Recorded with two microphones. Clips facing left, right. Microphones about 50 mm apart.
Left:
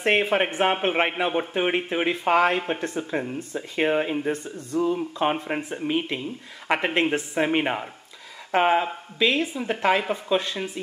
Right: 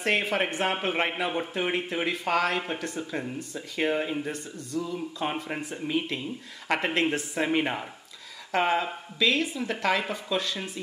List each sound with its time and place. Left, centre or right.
0.0 s a woman's voice: left